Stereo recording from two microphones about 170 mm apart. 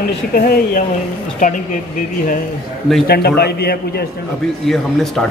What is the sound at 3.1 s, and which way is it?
Speech, 70° left (ahead or behind).